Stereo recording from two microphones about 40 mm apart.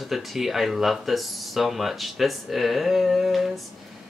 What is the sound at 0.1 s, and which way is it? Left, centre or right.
Speech, centre.